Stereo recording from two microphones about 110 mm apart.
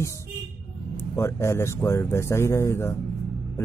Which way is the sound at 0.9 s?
25° left (ahead or behind).